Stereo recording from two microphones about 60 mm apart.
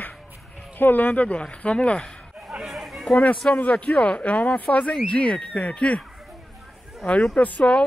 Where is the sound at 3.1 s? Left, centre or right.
Left.